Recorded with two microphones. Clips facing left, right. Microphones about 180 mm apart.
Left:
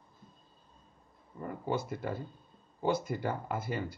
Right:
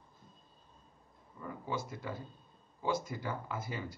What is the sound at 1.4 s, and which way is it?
A man's voice, 55° left (ahead or behind).